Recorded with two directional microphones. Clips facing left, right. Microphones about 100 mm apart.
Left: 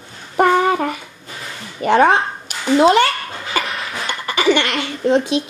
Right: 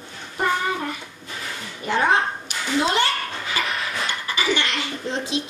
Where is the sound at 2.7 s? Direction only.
70° left (ahead or behind).